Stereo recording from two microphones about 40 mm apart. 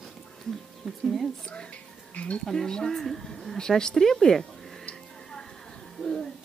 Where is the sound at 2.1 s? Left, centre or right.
Left.